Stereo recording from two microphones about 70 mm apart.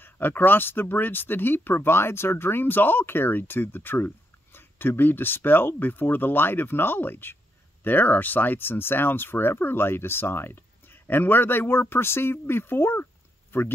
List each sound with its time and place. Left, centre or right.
0.0 s speech: left